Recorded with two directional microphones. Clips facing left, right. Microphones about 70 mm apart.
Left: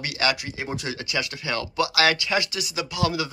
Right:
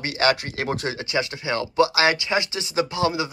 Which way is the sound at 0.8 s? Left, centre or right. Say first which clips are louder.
Right 4 dB; right.